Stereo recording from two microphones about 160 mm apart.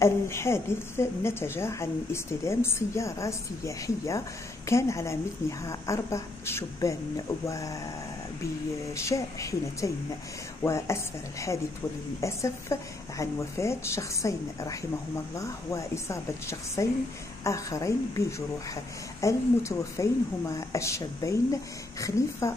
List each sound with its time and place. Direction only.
0.0 s a woman's voice: 15° left (ahead or behind)
8.9 s a woman's voice: 20° left (ahead or behind)
12.2 s a woman's voice: 20° left (ahead or behind)
19.2 s a woman's voice: 20° left (ahead or behind)